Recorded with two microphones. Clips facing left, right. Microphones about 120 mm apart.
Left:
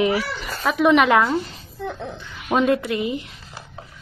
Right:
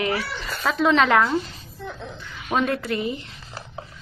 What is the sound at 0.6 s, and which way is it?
Speech, 15° left (ahead or behind).